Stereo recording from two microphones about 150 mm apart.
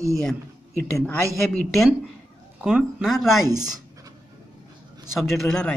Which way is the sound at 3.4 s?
25° right (ahead or behind).